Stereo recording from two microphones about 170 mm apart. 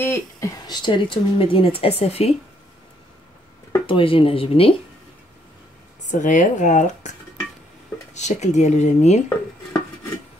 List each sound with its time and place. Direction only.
0.0 s speech: 15° left (ahead or behind); by 2.3 s 35° left (ahead or behind)
3.8 s speech: 30° left (ahead or behind)
6.2 s speech: 50° left (ahead or behind)